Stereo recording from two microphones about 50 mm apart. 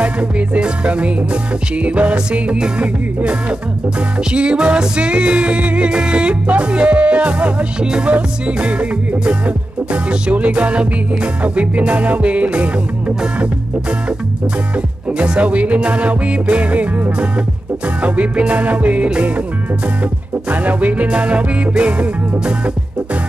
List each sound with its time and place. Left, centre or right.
0.0 s music: right
4.2 s music: centre
15.1 s music: right
20.4 s music: right